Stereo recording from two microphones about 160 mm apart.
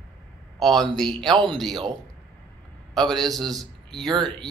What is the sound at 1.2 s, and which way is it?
Speech, 25° right (ahead or behind).